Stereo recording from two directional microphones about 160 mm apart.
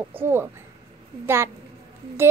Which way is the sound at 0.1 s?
15° right (ahead or behind).